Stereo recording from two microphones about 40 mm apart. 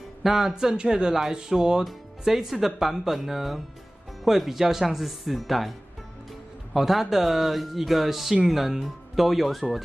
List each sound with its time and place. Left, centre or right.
0.2 s speech: centre
0.6 s speech: centre